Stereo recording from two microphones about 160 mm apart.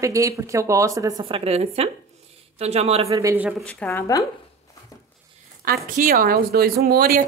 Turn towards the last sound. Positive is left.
turn(degrees=-70)  # may be behind; listen again after turning